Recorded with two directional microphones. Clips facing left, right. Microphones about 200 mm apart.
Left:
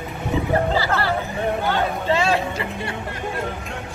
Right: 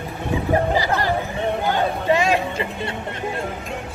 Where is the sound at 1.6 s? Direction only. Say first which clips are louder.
Right 1 dB; 15° right (ahead or behind).